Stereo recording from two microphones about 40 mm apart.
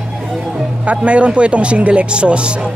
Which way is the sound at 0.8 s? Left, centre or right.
Right.